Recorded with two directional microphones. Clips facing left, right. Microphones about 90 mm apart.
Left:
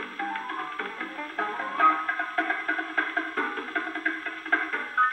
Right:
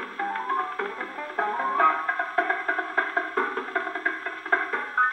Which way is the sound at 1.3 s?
15° right (ahead or behind).